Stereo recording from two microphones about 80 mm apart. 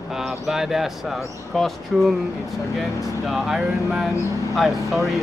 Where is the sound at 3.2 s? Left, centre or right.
Centre.